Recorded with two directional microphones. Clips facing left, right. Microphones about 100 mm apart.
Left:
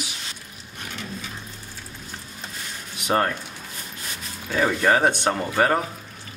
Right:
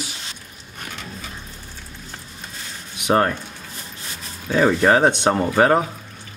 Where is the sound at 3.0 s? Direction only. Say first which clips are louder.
Right 4 dB; 20° right (ahead or behind).